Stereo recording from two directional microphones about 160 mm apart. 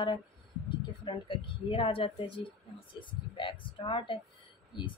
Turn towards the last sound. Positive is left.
turn(degrees=30)  # may be behind; listen again after turning